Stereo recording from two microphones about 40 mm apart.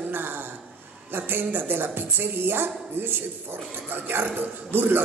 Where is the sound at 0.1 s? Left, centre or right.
Right.